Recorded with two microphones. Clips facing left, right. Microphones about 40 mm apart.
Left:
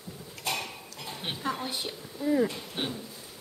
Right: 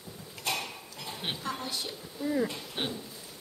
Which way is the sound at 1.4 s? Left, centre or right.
Centre.